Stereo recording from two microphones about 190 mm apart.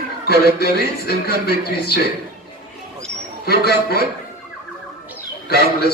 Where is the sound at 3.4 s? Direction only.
55° left (ahead or behind).